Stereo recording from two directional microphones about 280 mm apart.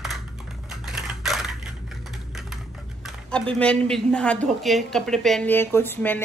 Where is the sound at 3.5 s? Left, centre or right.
Centre.